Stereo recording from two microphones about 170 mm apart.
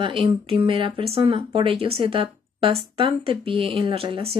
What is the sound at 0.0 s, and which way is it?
Speech, 30° right (ahead or behind).